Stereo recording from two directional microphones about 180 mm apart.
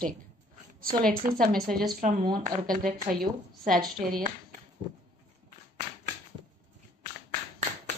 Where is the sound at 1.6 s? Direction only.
Centre (ahead or behind).